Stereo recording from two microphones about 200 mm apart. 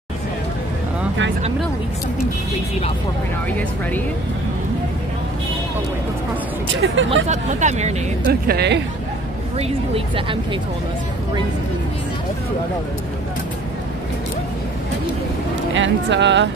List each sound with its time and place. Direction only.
6.7 s speech: 70° right (ahead or behind)
7.2 s speech: 35° right (ahead or behind)
8.3 s speech: 55° right (ahead or behind)
9.6 s speech: 25° right (ahead or behind)
15.7 s speech: 65° right (ahead or behind)